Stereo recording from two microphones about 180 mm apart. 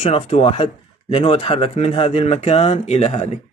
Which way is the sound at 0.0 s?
35° left (ahead or behind).